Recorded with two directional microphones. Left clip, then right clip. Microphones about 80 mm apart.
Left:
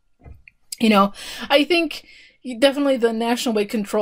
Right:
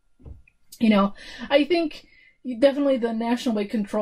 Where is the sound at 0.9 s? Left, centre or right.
Left.